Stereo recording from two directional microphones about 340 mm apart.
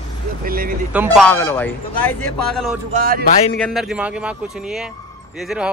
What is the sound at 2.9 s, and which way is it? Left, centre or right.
Speech, right.